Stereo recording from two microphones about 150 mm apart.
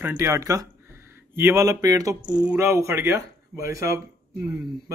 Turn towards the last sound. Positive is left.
turn(degrees=-10)  # may be behind; listen again after turning